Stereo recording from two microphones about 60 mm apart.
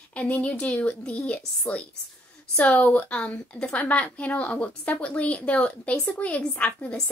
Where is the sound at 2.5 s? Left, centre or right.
Left.